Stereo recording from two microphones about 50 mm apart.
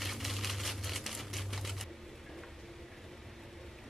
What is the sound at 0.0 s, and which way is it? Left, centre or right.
Typewriter, centre.